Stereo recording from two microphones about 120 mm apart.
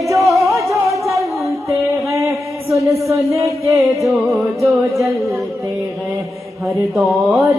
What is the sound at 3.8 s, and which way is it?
Music, centre (ahead or behind).